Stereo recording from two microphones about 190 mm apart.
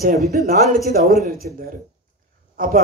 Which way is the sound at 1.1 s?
50° right (ahead or behind).